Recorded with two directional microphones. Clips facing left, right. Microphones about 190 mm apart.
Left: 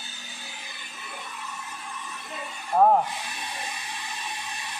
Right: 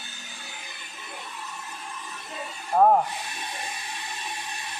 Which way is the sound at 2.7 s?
5° right (ahead or behind).